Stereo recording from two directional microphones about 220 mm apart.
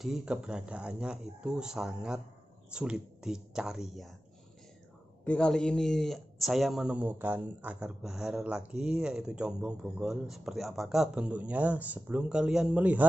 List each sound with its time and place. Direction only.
0.0 s speech: 5° right (ahead or behind)
5.2 s speech: 5° left (ahead or behind)